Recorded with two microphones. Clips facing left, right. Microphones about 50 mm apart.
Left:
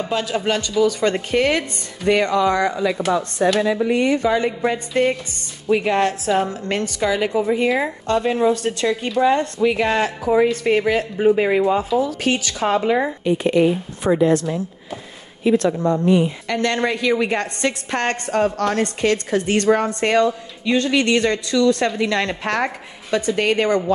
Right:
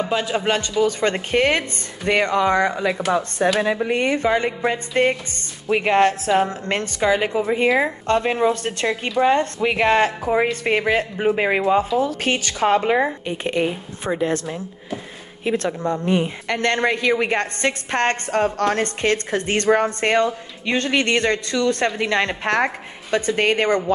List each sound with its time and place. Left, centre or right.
0.0 s speech: right
13.4 s speech: right
15.4 s speech: right